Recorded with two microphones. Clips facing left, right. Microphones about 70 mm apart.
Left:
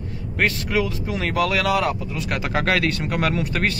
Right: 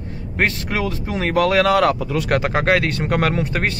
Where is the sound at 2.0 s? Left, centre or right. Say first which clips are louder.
Right 7 dB; right.